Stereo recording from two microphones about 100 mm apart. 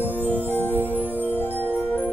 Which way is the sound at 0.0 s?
20° left (ahead or behind).